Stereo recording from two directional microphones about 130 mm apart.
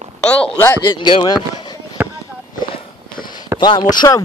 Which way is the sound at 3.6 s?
35° left (ahead or behind).